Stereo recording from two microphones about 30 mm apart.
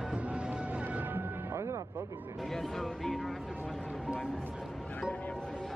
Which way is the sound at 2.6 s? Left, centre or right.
Centre.